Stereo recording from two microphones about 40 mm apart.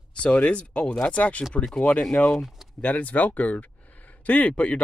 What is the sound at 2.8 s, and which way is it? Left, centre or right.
Speech, left.